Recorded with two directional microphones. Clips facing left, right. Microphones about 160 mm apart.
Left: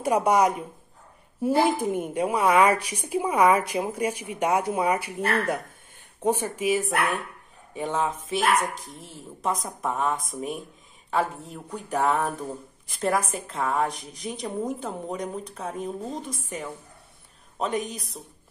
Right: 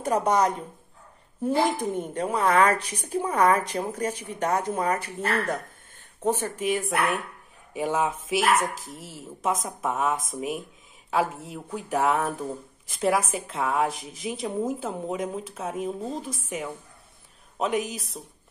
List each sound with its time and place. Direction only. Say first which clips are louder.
0.0 s a woman's voice: left 2 dB; 10° left (ahead or behind)
7.7 s speech: right 1 dB; 10° right (ahead or behind)